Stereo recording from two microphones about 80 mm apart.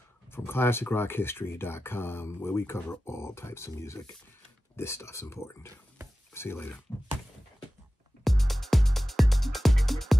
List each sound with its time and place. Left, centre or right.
0.3 s speech: left
8.2 s music: centre